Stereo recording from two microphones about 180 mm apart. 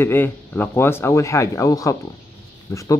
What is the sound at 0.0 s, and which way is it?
Speech, 10° left (ahead or behind).